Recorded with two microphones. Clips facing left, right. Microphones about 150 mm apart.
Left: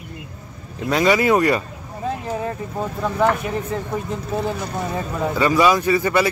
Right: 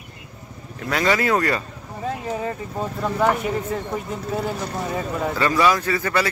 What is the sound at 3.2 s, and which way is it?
Speech, 15° right (ahead or behind).